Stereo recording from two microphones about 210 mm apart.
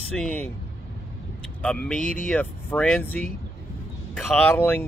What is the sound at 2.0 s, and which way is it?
Speech, 40° left (ahead or behind).